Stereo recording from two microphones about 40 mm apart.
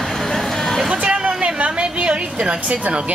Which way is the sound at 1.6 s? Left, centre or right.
Right.